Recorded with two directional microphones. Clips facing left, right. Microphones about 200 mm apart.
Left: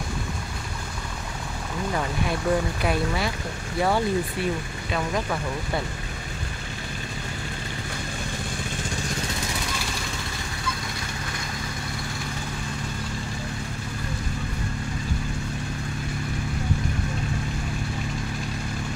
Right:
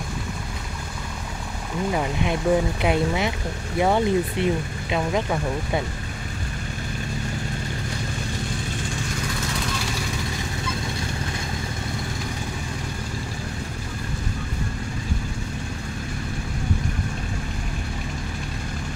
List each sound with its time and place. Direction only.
1.9 s speech: 15° right (ahead or behind)